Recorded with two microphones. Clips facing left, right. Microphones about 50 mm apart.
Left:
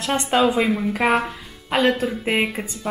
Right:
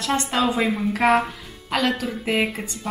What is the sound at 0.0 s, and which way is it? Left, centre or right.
Speech, left.